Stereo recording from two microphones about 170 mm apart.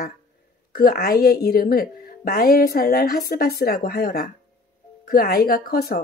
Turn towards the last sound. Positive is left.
turn(degrees=65)  # may be behind; listen again after turning